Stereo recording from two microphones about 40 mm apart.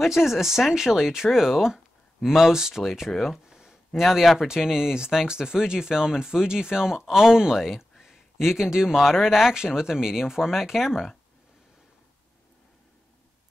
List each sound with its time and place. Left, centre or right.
0.0 s speech: centre
3.4 s a sound: centre
4.5 s speech: centre